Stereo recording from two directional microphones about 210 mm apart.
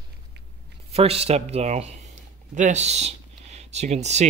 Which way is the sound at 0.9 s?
30° right (ahead or behind).